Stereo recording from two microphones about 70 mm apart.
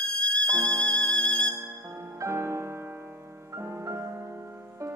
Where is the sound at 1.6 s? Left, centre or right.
Right.